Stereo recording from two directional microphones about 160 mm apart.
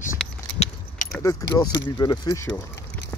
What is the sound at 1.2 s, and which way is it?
Speech, 20° left (ahead or behind).